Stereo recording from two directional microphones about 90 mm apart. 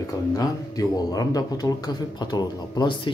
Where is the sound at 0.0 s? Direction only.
40° left (ahead or behind).